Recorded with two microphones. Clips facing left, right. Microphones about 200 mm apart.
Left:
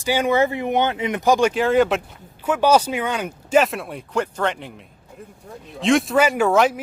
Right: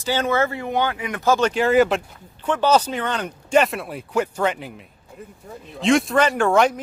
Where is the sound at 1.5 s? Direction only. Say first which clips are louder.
Even; centre (ahead or behind).